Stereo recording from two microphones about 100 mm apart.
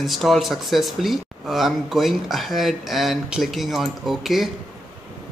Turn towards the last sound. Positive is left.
turn(degrees=0)  # may be behind; listen again after turning